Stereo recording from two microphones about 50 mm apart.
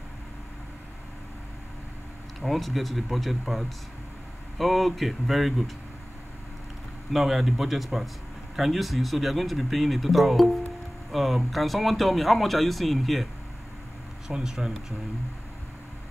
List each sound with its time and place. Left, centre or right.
2.4 s speech: centre
7.1 s speech: centre
14.2 s speech: centre